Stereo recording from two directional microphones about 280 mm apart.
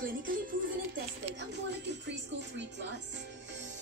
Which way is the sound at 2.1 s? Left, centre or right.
Right.